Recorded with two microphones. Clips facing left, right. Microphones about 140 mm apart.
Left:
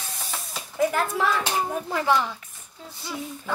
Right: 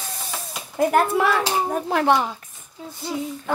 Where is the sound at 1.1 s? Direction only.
60° right (ahead or behind).